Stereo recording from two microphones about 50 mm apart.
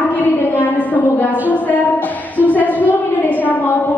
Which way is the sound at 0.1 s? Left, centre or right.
Left.